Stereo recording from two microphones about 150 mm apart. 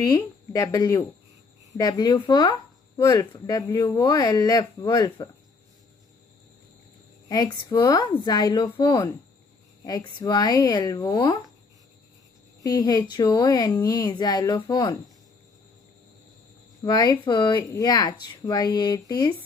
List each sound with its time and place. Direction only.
0.0 s speech: 20° left (ahead or behind)
7.2 s speech: 25° left (ahead or behind)
12.6 s speech: 25° left (ahead or behind)
16.8 s speech: 25° left (ahead or behind)